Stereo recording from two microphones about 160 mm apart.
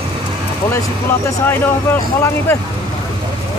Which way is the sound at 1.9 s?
15° left (ahead or behind).